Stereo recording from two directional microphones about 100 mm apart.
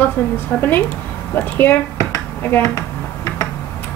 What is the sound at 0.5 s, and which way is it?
Speech, 15° left (ahead or behind).